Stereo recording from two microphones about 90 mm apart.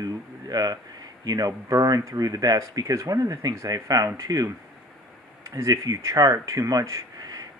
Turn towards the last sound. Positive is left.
turn(degrees=-45)  # may be behind; listen again after turning